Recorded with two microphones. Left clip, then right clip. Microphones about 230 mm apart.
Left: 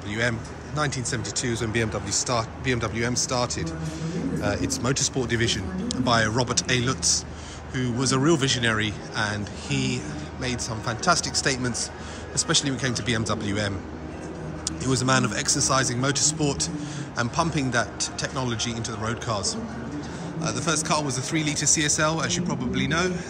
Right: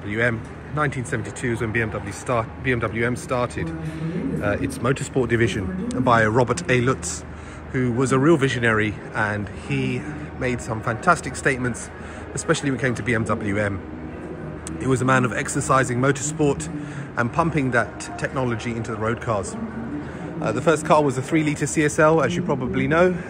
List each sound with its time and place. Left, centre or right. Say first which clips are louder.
0.1 s speech: right 4 dB; centre
3.1 s speech: right 2 dB; centre
14.8 s speech: right 4 dB; centre
20.4 s speech: right 7 dB; centre